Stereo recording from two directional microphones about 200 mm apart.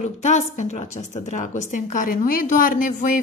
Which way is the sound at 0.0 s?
35° left (ahead or behind).